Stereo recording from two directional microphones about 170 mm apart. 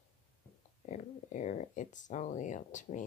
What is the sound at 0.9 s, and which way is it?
Speech, 45° left (ahead or behind).